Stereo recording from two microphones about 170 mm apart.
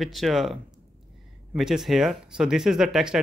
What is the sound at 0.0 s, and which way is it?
Speech, centre (ahead or behind).